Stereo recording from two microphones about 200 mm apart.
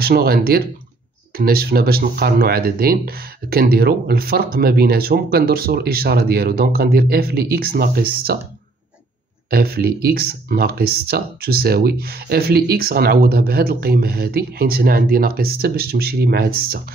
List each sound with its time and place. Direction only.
0.0 s speech: 50° right (ahead or behind)
9.5 s speech: 50° right (ahead or behind)